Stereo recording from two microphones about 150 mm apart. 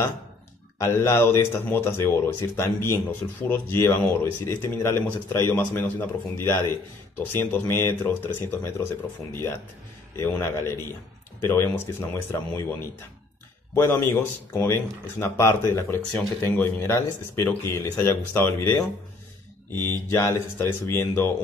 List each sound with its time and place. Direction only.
0.7 s speech: 20° left (ahead or behind)